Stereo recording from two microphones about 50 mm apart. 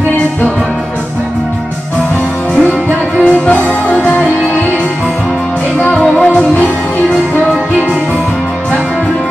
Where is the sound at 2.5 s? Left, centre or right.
Left.